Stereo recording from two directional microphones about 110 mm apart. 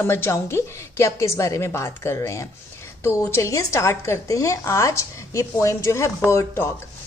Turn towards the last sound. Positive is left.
turn(degrees=25)  # may be behind; listen again after turning